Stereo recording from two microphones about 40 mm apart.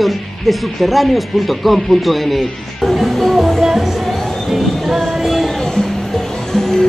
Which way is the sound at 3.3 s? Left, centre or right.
Centre.